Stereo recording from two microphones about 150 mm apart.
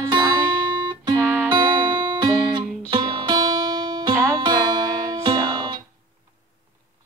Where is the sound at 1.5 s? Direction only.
30° right (ahead or behind).